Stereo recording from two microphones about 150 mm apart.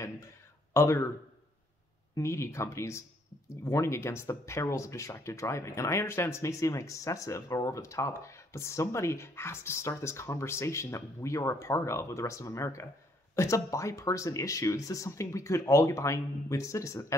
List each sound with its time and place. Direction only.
0.7 s speech: 20° left (ahead or behind)
2.1 s speech: 20° left (ahead or behind)